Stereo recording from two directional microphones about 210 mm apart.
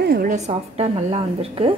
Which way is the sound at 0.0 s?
45° right (ahead or behind).